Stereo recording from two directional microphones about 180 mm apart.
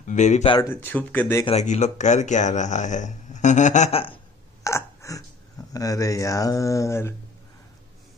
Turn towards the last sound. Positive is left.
turn(degrees=15)  # may be behind; listen again after turning